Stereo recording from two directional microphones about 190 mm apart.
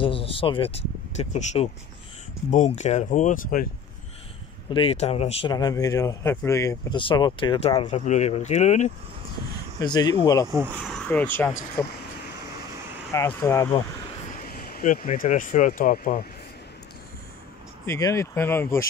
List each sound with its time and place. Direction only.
0.0 s speech: 30° left (ahead or behind)
4.6 s speech: 25° left (ahead or behind)
5.5 s speech: 20° left (ahead or behind); by 8.9 s 40° left (ahead or behind)
9.8 s speech: 20° left (ahead or behind)
10.9 s speech: 5° left (ahead or behind)
13.1 s speech: 15° left (ahead or behind)
14.4 s speech: 50° left (ahead or behind)
17.8 s speech: 15° left (ahead or behind)